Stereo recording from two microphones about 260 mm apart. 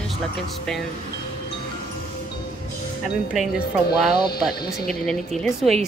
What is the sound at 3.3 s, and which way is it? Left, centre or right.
Speech, centre.